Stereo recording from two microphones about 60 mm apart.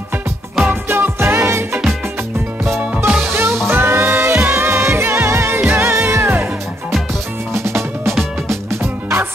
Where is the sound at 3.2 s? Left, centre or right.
Right.